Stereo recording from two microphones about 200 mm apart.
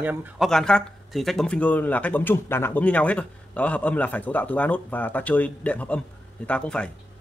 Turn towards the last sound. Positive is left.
turn(degrees=5)  # may be behind; listen again after turning